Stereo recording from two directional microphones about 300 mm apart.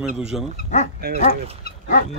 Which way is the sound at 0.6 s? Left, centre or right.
Left.